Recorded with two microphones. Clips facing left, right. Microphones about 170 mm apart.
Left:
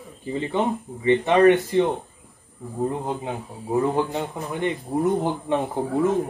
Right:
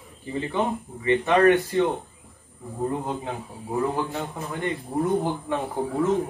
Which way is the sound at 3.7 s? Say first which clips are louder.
Left 4 dB; 20° left (ahead or behind).